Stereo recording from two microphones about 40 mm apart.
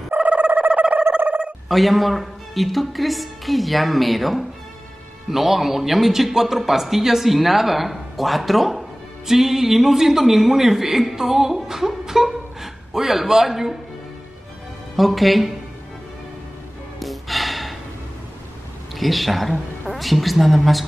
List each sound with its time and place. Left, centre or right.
0.1 s a sound: right
0.7 s a sound: right
1.7 s a man's voice: centre
15.0 s speech: centre
17.0 s music: centre
18.9 s speech: centre